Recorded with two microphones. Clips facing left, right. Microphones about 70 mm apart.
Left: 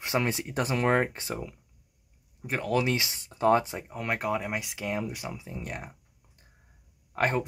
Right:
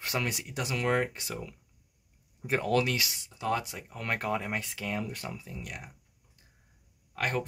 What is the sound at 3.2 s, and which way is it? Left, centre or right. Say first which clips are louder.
Speech: left 8 dB; left.